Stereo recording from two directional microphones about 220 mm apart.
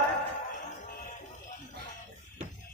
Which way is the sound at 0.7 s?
35° left (ahead or behind).